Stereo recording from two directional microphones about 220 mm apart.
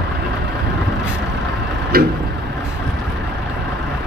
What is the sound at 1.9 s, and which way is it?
Vehicle, 45° right (ahead or behind).